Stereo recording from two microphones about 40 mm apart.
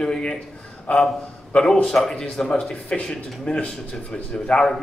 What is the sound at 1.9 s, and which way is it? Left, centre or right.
A man's voice, centre.